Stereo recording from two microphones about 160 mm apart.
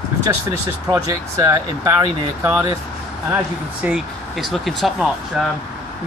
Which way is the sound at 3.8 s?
Centre (ahead or behind).